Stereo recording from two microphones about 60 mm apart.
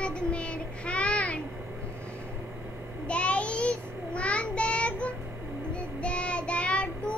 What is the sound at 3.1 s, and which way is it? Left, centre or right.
Child singing, centre.